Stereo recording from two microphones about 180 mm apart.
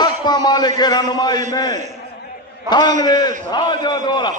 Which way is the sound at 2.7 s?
25° left (ahead or behind).